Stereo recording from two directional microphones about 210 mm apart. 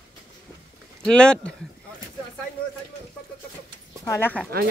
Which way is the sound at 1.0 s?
5° left (ahead or behind).